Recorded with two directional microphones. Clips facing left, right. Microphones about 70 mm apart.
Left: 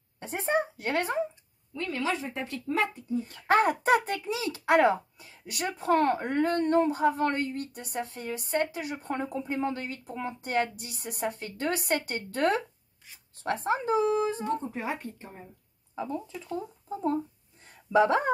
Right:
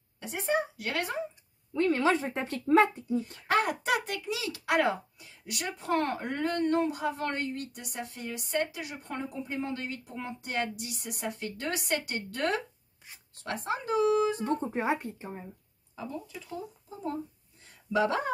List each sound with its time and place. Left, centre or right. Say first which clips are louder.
0.2 s a child's voice: left 2 dB; left
1.7 s speech: right 5 dB; right
3.4 s a child's voice: left 5 dB; left
14.6 s speech: right 4 dB; right
15.0 s speech: right 2 dB; centre
15.9 s speech: left 6 dB; left
16.4 s a child's voice: left 5 dB; left